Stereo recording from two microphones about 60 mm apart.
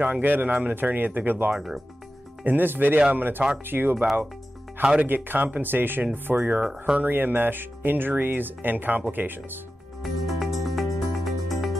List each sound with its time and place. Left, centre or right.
0.0 s speech: right
1.5 s speech: centre
2.4 s speech: right
5.0 s speech: right
6.3 s speech: centre
7.0 s speech: right
10.0 s music: centre